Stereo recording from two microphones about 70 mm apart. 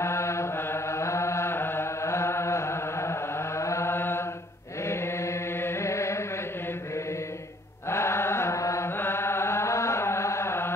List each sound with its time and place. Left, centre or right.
0.0 s mantra: left
0.9 s chant: left
7.9 s chant: left
9.0 s chant: left